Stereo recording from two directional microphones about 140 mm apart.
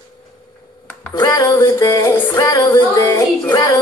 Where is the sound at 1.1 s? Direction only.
25° left (ahead or behind).